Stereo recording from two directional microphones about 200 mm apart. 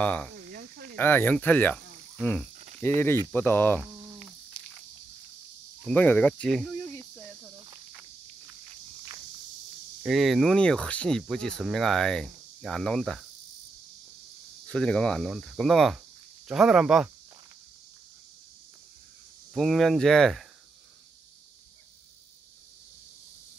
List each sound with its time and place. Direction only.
0.0 s speech: 5° left (ahead or behind)
0.5 s cricket: 55° right (ahead or behind)
0.9 s cricket: 10° left (ahead or behind)
2.8 s speech: 10° left (ahead or behind)
3.8 s insect: 10° right (ahead or behind)
5.9 s speech: 10° left (ahead or behind)
10.0 s speech: centre (ahead or behind)
14.7 s speech: 5° left (ahead or behind)
19.5 s speech: centre (ahead or behind)